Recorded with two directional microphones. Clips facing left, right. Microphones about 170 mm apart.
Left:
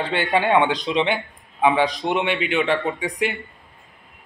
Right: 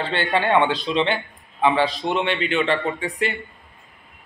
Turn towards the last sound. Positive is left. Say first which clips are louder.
# even
turn(degrees=10)  # may be behind; listen again after turning